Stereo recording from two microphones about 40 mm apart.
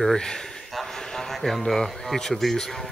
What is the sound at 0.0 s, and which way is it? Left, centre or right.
Speech, centre.